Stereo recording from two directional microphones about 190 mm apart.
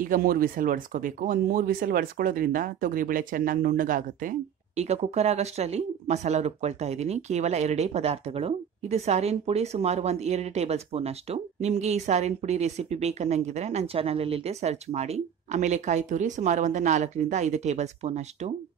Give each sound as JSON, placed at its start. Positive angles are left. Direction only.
{"t": 0.0, "sound": "speech", "side_deg": -50}